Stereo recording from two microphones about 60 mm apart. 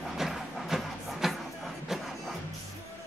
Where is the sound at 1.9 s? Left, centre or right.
Centre.